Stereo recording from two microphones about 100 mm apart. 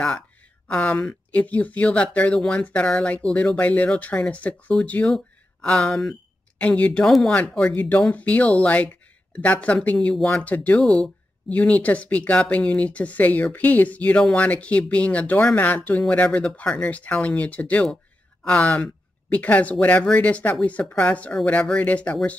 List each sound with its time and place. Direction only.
0.7 s speech: 15° left (ahead or behind)
7.7 s speech: 15° left (ahead or behind)
10.8 s speech: centre (ahead or behind)
11.4 s speech: 15° left (ahead or behind)